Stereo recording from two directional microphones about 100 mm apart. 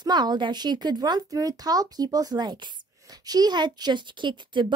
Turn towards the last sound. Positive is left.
turn(degrees=-50)  # may be behind; listen again after turning